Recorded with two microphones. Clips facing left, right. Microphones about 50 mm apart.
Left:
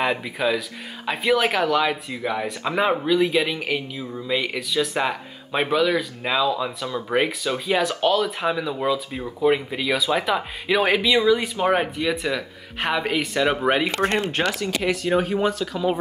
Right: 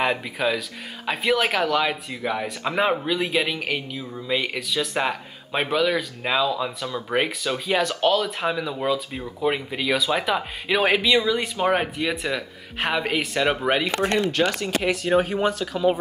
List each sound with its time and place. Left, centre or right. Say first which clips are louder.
0.0 s speech: even; centre
13.6 s speech: left 2 dB; centre
14.1 s speech: right 1 dB; left
14.4 s speech: right 1 dB; centre